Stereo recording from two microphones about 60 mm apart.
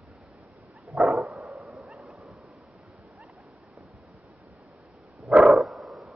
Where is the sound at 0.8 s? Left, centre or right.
Centre.